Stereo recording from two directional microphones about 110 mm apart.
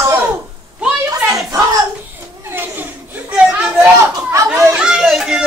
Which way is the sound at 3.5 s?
15° right (ahead or behind).